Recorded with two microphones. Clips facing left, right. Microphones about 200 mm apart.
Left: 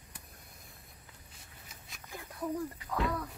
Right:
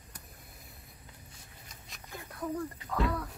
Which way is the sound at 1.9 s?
5° left (ahead or behind).